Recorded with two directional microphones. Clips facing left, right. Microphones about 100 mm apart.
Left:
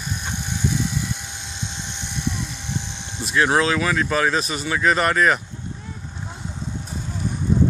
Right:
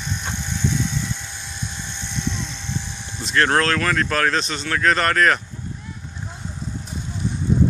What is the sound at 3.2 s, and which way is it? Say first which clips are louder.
Speech: even; 10° left (ahead or behind).